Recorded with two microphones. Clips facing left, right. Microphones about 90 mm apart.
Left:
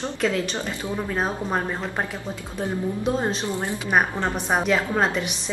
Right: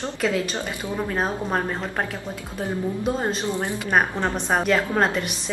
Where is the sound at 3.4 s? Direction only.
20° right (ahead or behind).